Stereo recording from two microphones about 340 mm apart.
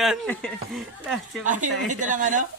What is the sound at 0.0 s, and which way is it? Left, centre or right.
A man's voice, centre.